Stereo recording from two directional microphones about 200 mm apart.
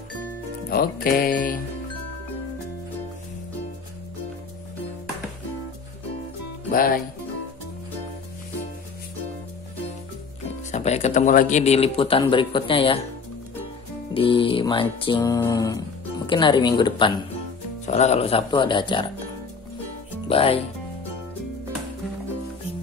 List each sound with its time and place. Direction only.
0.7 s music: 50° left (ahead or behind)
6.7 s music: 45° left (ahead or behind)
10.7 s speech: 35° left (ahead or behind)
14.1 s mantra: 25° left (ahead or behind)
17.8 s mantra: 35° left (ahead or behind)
20.2 s mantra: 30° left (ahead or behind)